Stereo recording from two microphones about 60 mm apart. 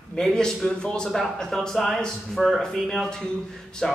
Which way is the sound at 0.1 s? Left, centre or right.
Centre.